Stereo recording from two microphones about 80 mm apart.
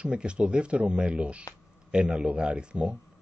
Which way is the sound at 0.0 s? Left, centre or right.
Centre.